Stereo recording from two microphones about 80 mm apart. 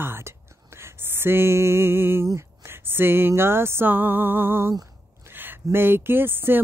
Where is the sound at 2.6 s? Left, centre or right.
Right.